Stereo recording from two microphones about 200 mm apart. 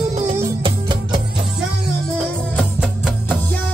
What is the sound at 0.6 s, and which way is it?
Music, 25° right (ahead or behind).